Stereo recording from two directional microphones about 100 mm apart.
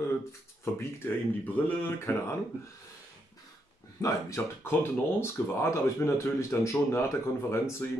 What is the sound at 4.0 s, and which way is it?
Speech, 25° left (ahead or behind).